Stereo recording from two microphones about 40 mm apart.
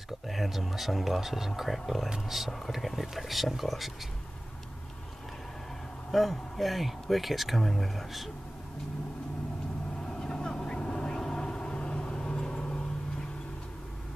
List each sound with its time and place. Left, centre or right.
0.3 s speech: centre
6.1 s speech: centre
10.0 s vehicle: centre